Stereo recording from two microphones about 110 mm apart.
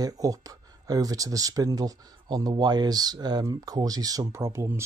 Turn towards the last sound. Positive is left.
turn(degrees=-25)  # may be behind; listen again after turning